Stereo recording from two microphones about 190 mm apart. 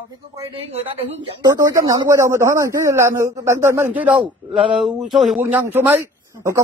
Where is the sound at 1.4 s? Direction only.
20° right (ahead or behind).